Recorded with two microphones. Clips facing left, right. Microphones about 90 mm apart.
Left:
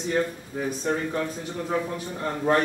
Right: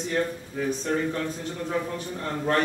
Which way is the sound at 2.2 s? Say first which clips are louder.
Left 3 dB; 15° left (ahead or behind).